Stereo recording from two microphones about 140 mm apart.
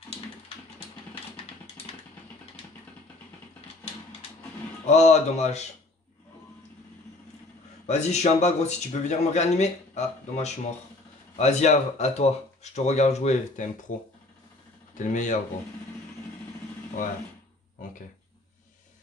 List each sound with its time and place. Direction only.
4.8 s speech: 55° left (ahead or behind)
7.8 s speech: 55° left (ahead or behind)
15.0 s speech: 60° left (ahead or behind)